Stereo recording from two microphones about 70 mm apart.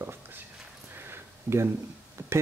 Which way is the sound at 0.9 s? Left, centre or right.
Right.